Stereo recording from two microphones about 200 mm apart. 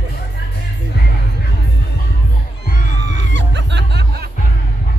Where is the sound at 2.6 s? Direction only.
45° left (ahead or behind).